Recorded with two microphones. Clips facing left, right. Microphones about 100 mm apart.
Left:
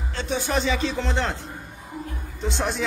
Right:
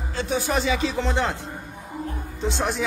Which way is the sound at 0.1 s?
5° right (ahead or behind).